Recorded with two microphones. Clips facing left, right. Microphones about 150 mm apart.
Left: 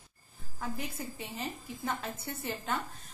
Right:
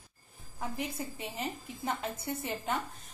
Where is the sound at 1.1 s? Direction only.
20° right (ahead or behind).